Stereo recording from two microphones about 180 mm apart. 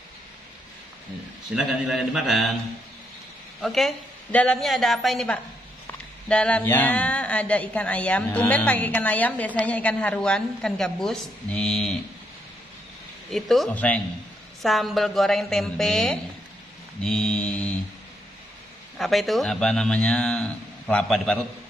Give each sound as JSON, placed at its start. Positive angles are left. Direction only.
{"t": 1.5, "sound": "a man's voice", "side_deg": -5}
{"t": 3.6, "sound": "a man's voice", "side_deg": 0}
{"t": 13.3, "sound": "a man's voice", "side_deg": 0}
{"t": 18.9, "sound": "a man's voice", "side_deg": 0}